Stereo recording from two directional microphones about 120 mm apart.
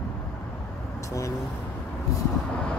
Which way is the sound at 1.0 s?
25° left (ahead or behind).